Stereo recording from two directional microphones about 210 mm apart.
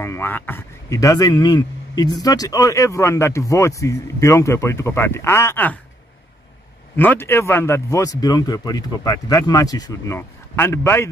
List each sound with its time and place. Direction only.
0.0 s a man's voice: 10° left (ahead or behind)
7.0 s speech: 10° left (ahead or behind)